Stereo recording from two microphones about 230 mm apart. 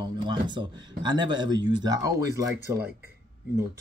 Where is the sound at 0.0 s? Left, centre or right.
Centre.